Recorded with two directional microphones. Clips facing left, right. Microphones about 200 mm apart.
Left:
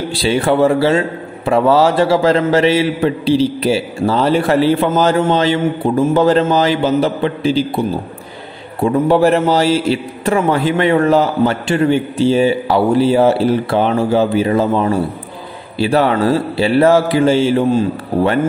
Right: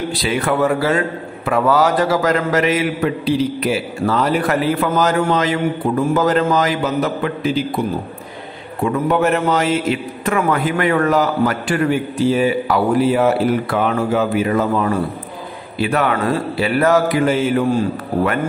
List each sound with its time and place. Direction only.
0.1 s a man's voice: 30° left (ahead or behind)
8.8 s a man's voice: 30° left (ahead or behind)